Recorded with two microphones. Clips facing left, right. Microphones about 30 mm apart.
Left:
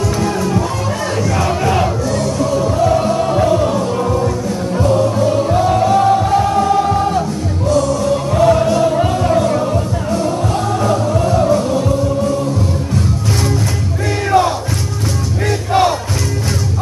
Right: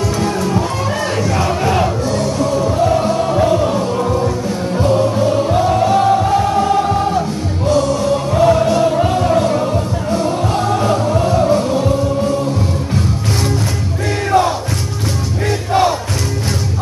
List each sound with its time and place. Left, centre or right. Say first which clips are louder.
0.2 s music: even; centre
7.6 s music: even; centre
8.3 s music: even; centre
15.7 s crowd: left 1 dB; centre